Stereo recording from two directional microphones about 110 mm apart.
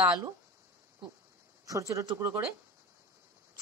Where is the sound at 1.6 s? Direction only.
30° right (ahead or behind).